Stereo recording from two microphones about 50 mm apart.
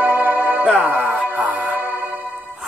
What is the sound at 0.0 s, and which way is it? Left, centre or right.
Music, right.